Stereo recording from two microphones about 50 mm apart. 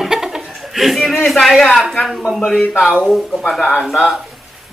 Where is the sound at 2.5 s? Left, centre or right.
Centre.